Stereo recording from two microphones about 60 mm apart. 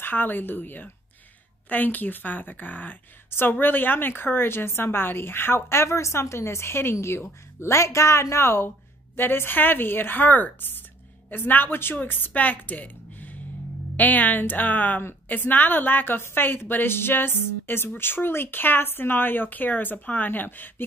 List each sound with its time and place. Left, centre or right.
0.0 s a woman's voice: left